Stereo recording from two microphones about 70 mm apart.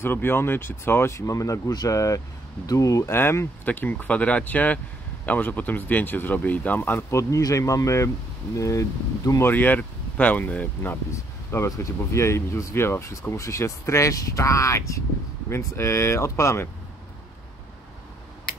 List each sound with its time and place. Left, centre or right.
0.0 s speech: left
1.1 s speech: left
3.1 s speech: left
7.1 s speech: left
9.4 s speech: left
11.1 s speech: left